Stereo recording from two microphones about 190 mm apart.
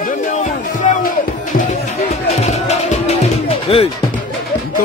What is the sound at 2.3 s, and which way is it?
Music, 35° left (ahead or behind).